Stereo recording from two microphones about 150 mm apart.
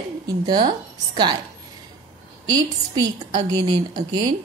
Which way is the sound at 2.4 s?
25° right (ahead or behind).